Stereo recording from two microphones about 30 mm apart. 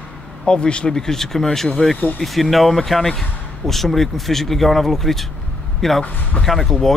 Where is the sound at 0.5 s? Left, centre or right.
Left.